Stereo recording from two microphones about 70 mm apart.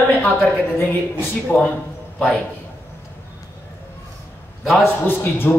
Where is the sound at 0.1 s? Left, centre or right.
Left.